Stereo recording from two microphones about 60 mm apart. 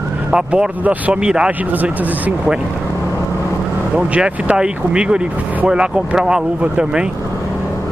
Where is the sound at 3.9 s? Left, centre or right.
Right.